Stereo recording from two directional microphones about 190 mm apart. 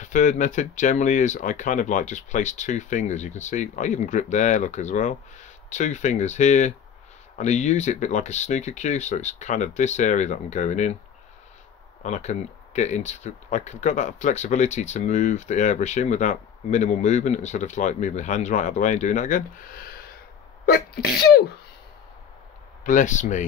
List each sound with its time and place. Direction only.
0.0 s speech: 40° left (ahead or behind)
12.0 s speech: 35° left (ahead or behind); by 21.4 s 55° left (ahead or behind)
22.8 s speech: 40° left (ahead or behind)